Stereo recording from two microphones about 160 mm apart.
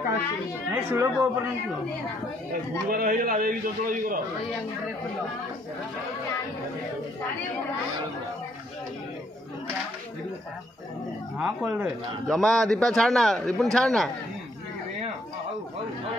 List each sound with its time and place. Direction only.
0.7 s speech: 15° right (ahead or behind)
2.9 s a man's voice: 65° right (ahead or behind)
11.3 s a man's voice: 5° right (ahead or behind)